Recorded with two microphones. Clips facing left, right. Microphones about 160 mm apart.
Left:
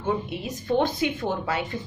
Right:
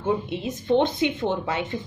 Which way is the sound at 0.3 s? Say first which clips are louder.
Right 4 dB; 20° right (ahead or behind).